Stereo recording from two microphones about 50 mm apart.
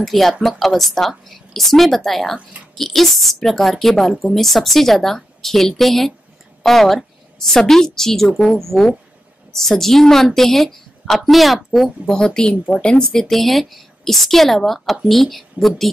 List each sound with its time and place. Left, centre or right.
0.0 s a woman's voice: centre
12.1 s a woman's voice: centre
13.2 s a woman's voice: centre